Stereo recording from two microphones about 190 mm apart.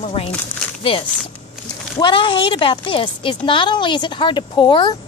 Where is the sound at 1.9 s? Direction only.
25° left (ahead or behind).